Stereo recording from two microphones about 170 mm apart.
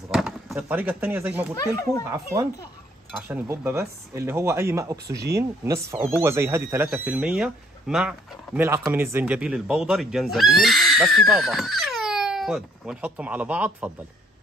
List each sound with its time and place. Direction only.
0.1 s speech: centre (ahead or behind)
1.6 s speech: 20° left (ahead or behind)
2.0 s speech: 20° right (ahead or behind)